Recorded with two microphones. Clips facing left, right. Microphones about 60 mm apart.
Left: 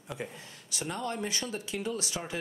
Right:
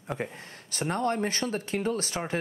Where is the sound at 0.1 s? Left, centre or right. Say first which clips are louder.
Right 5 dB; right.